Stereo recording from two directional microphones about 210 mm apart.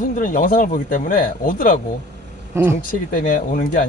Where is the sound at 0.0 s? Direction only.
40° left (ahead or behind).